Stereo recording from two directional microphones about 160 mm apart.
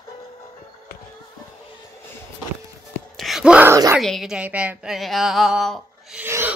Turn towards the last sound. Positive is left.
turn(degrees=-15)  # may be behind; listen again after turning